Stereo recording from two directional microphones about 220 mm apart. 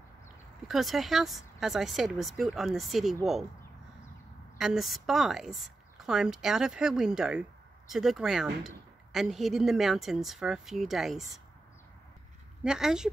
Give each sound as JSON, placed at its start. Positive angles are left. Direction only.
{"t": 0.7, "sound": "speech", "side_deg": 0}
{"t": 4.6, "sound": "speech", "side_deg": 0}
{"t": 12.6, "sound": "speech", "side_deg": -5}